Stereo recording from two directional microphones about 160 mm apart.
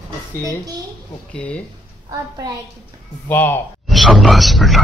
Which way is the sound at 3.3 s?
10° left (ahead or behind).